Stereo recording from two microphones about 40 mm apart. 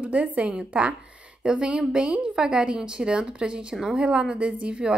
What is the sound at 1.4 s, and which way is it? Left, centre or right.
A woman's voice, right.